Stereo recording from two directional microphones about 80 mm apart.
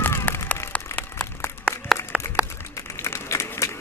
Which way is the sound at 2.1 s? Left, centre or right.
Centre.